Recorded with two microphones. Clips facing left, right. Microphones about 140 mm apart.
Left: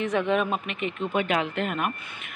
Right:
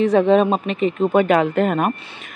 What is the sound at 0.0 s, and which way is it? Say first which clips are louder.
Speech: right 10 dB; 35° right (ahead or behind).